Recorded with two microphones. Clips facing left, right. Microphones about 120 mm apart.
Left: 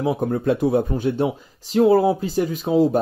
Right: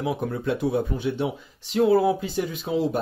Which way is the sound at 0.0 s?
45° left (ahead or behind).